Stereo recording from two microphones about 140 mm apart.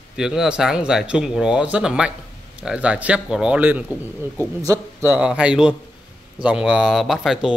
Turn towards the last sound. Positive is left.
turn(degrees=0)  # may be behind; listen again after turning